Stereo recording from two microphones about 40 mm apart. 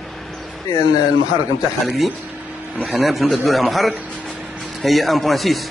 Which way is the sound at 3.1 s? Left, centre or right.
Centre.